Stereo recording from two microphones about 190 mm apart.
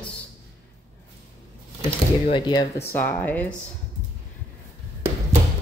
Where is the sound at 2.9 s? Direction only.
10° left (ahead or behind).